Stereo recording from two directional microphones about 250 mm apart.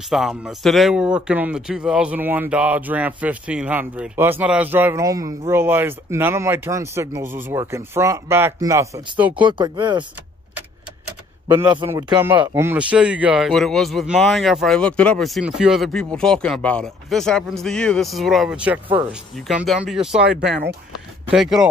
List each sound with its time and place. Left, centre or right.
0.1 s speech: centre
11.4 s a man's voice: centre
21.3 s a man's voice: centre